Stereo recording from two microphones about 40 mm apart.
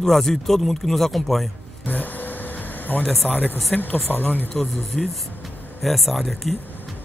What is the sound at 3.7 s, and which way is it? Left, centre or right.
Speech, left.